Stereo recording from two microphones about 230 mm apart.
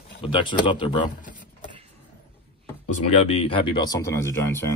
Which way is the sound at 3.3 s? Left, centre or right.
Left.